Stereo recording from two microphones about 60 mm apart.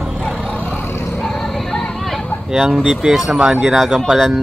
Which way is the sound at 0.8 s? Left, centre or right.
Left.